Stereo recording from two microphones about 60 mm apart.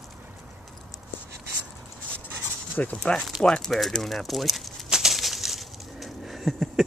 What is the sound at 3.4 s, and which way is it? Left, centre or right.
Speech, centre.